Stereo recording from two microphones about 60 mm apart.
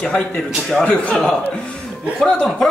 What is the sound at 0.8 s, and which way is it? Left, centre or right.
Speech, left.